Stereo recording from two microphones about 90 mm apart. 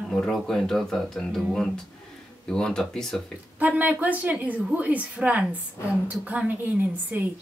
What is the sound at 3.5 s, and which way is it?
A woman's voice, 20° right (ahead or behind).